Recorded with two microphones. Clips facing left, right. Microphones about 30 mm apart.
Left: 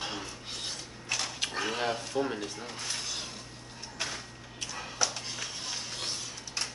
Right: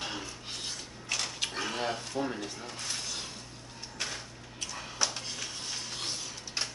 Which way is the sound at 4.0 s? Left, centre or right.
Centre.